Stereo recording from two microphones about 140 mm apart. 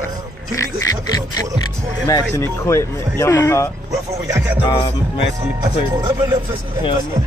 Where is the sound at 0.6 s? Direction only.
25° left (ahead or behind).